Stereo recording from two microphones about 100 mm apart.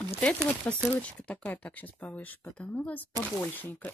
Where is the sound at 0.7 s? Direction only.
15° left (ahead or behind).